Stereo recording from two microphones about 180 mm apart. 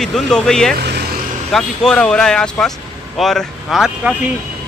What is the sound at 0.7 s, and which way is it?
Speech, 65° right (ahead or behind).